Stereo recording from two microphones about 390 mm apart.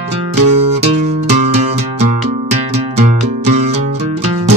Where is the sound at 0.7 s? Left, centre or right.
Centre.